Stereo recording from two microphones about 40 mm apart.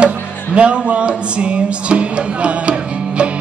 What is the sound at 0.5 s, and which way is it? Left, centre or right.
Speech, right.